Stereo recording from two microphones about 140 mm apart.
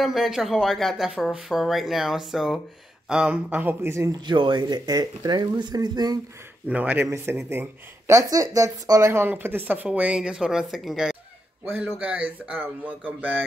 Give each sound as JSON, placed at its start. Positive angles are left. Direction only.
{"t": 0.0, "sound": "speech", "side_deg": 0}
{"t": 4.3, "sound": "speech", "side_deg": -30}
{"t": 6.7, "sound": "speech", "side_deg": -10}
{"t": 11.6, "sound": "speech", "side_deg": -15}